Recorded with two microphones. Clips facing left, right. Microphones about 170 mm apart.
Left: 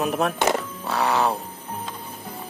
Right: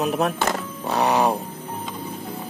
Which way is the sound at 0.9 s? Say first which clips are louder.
Right 2 dB; 20° right (ahead or behind).